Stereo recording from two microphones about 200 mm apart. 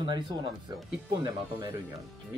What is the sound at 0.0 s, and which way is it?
Speech, 20° right (ahead or behind).